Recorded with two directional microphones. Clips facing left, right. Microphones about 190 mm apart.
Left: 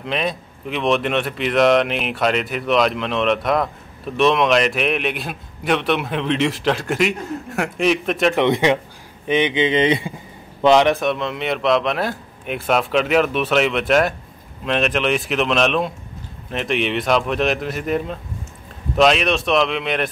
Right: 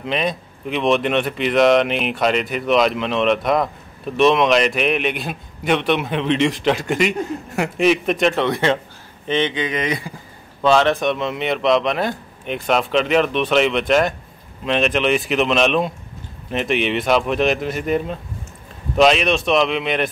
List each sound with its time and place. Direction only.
0.0 s speech: centre (ahead or behind)
8.4 s speech: 15° left (ahead or behind)
11.0 s speech: centre (ahead or behind)